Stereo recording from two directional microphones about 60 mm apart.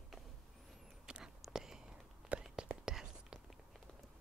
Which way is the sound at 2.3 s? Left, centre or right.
Right.